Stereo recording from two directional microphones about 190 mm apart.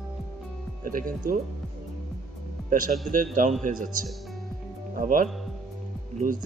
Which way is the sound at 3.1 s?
45° right (ahead or behind).